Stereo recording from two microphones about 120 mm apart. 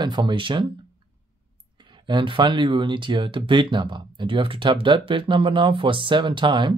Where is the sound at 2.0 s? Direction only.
40° right (ahead or behind).